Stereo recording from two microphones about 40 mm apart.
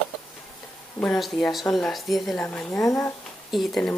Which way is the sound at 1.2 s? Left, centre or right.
Centre.